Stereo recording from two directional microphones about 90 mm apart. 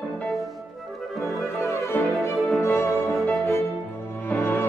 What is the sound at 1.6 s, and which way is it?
Music, 30° left (ahead or behind).